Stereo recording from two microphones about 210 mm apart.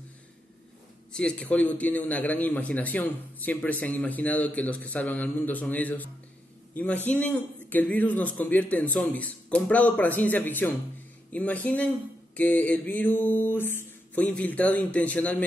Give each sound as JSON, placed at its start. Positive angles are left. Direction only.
{"t": 1.1, "sound": "a man's voice", "side_deg": 5}